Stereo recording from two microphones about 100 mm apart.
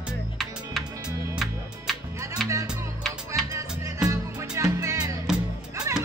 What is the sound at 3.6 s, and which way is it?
Music, 30° right (ahead or behind).